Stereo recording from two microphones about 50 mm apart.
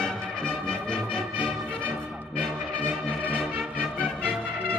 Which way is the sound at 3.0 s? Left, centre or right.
Right.